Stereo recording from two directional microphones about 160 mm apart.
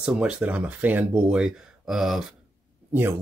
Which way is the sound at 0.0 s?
5° right (ahead or behind).